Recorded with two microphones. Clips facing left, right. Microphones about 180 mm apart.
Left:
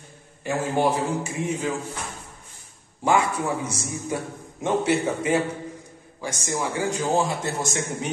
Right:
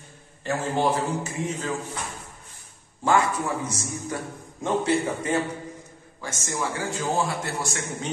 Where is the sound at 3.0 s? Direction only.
10° left (ahead or behind).